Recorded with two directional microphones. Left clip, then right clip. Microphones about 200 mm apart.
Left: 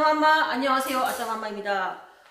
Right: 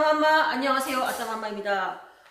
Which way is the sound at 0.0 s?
5° left (ahead or behind).